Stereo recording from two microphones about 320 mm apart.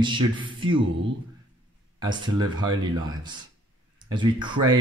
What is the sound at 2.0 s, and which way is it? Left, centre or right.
Speech, centre.